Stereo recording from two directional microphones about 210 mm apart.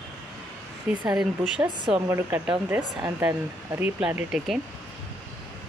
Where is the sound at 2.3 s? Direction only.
10° right (ahead or behind).